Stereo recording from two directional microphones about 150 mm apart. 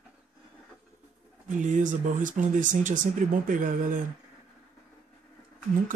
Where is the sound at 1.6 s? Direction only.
55° right (ahead or behind).